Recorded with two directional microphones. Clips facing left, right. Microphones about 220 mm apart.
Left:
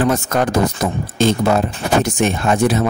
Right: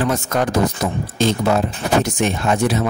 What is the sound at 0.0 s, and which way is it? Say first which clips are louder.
Speech: left 3 dB; 50° left (ahead or behind).